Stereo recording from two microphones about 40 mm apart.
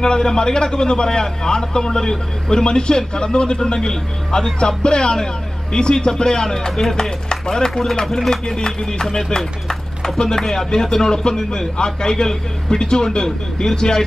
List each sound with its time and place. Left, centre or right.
0.0 s a man's voice: centre